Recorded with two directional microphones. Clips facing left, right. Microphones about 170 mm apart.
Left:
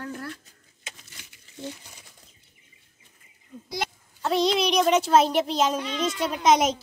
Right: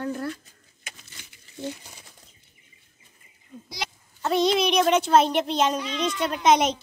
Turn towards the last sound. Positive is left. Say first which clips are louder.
# even
turn(degrees=0)  # may be behind; listen again after turning